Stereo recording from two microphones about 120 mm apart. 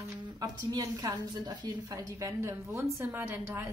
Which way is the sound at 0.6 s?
35° right (ahead or behind).